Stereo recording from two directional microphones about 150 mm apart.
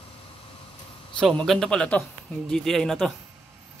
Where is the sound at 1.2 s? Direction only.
5° left (ahead or behind).